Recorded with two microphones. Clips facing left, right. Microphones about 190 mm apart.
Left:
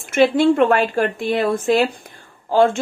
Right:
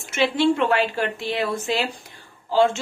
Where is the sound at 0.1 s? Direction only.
50° left (ahead or behind).